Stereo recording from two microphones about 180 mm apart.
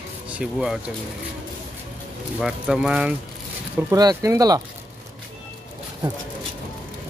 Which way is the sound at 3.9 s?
20° right (ahead or behind).